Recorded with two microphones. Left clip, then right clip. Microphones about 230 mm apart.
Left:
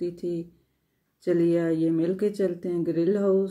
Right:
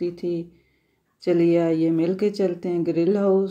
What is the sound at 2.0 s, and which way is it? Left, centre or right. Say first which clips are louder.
Speech: right 3 dB; centre.